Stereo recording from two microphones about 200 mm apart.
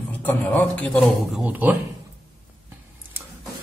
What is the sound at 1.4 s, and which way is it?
Speech, 10° right (ahead or behind).